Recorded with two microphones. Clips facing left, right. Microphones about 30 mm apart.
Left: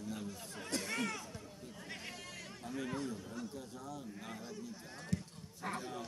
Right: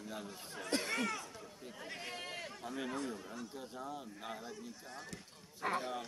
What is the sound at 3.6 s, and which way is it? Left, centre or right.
Speech, right.